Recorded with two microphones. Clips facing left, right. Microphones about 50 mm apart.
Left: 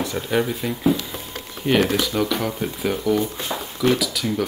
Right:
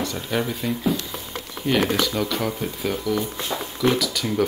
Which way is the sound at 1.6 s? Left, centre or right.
Left.